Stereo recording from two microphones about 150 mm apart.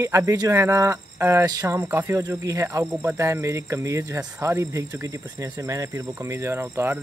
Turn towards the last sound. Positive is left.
turn(degrees=-15)  # may be behind; listen again after turning